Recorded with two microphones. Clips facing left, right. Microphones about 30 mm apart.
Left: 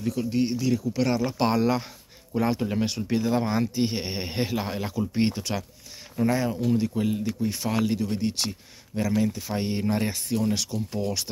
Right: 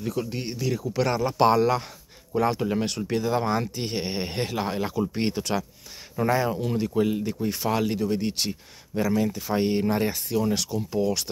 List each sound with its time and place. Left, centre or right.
0.0 s speech: centre
10.9 s speech: centre